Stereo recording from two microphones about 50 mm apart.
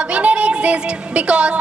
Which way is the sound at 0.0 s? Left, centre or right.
Right.